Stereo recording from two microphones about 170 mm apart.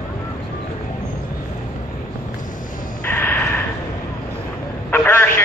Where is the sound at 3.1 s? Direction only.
10° left (ahead or behind).